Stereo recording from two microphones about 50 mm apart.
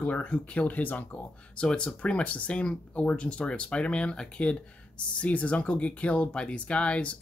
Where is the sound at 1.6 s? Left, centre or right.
Centre.